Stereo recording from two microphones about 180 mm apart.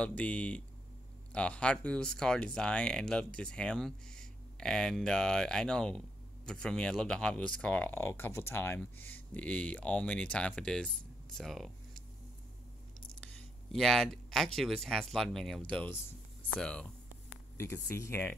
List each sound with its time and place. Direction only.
0.0 s speech: 5° left (ahead or behind)
13.2 s speech: 5° left (ahead or behind)